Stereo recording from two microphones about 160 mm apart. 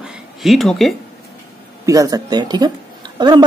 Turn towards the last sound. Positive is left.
turn(degrees=-25)  # may be behind; listen again after turning